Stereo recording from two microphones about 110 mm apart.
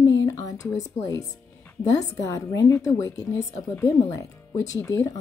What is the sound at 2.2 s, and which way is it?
Speech, 30° left (ahead or behind).